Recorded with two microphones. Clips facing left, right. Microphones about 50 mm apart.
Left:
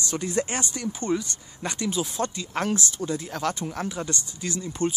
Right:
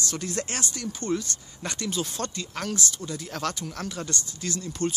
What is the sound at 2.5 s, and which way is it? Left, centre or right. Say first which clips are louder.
Speech: left 4 dB; left.